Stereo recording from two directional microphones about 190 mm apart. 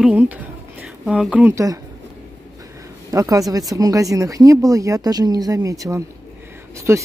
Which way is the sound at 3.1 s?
15° right (ahead or behind).